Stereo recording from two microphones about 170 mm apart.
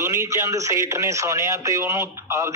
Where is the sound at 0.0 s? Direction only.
15° right (ahead or behind).